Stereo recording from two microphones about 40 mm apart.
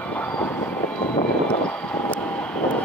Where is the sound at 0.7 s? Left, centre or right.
Left.